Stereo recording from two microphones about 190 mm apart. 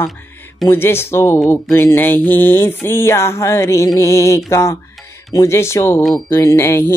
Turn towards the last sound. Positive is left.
turn(degrees=15)  # may be behind; listen again after turning